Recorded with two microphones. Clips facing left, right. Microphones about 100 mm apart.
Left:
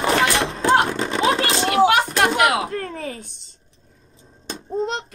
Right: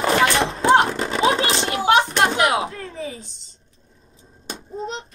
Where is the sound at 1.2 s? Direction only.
25° right (ahead or behind).